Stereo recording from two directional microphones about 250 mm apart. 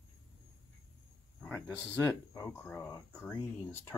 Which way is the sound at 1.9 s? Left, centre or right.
Centre.